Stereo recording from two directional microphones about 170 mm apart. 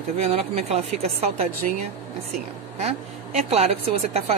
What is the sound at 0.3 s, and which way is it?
A woman's voice, 35° right (ahead or behind).